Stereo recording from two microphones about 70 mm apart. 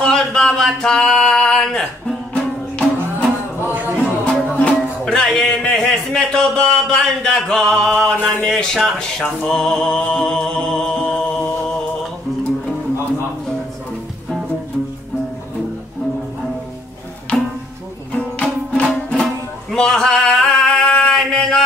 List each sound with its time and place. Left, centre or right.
0.0 s a sound: centre
2.7 s music: centre
3.6 s music: right
4.3 s music: centre
8.5 s speech: centre
17.3 s music: centre